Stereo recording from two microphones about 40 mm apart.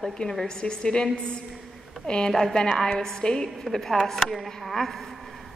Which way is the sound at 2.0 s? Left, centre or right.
Left.